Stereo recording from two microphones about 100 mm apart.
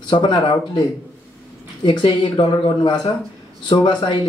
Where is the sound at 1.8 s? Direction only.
55° left (ahead or behind).